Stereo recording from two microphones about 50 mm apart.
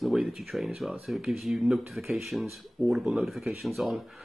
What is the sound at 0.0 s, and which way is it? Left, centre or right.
Speech, centre.